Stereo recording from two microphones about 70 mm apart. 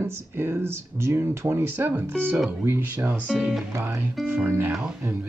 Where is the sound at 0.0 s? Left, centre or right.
Right.